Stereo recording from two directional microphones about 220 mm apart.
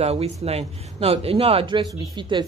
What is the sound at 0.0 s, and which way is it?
Speech, 25° right (ahead or behind).